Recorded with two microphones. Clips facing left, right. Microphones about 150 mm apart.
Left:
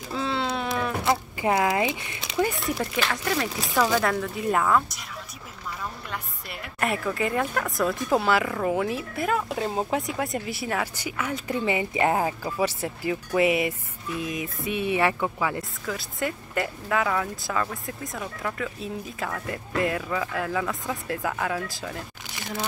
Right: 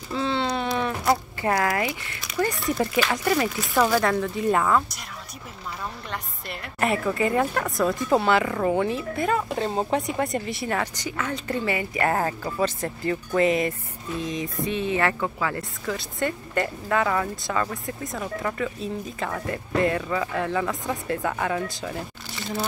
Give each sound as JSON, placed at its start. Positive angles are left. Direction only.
{"t": 0.1, "sound": "a sound", "side_deg": 0}
{"t": 1.4, "sound": "speech", "side_deg": 20}
{"t": 2.4, "sound": "speech", "side_deg": 10}
{"t": 2.8, "sound": "speech", "side_deg": -5}
{"t": 6.1, "sound": "speech", "side_deg": 5}
{"t": 15.8, "sound": "speech", "side_deg": 0}